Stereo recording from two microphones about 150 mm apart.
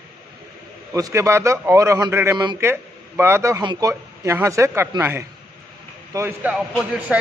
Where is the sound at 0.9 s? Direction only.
20° right (ahead or behind).